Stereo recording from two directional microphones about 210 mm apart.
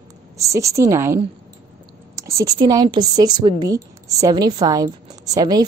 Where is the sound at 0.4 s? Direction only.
15° right (ahead or behind).